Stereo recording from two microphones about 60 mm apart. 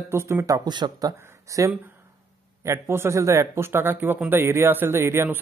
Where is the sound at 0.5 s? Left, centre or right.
Right.